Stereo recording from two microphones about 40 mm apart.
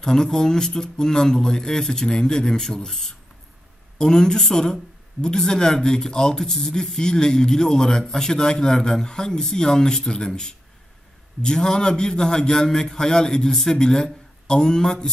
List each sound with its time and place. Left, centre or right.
0.0 s speech: centre